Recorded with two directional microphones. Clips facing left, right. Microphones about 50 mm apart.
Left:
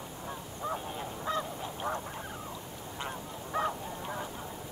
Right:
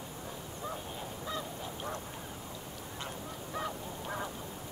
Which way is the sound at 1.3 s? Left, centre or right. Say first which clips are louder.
Left 6 dB; left.